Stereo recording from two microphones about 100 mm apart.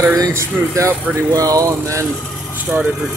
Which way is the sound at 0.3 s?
30° right (ahead or behind).